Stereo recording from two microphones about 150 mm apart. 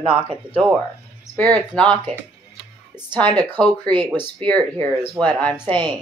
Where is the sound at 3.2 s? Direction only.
30° right (ahead or behind).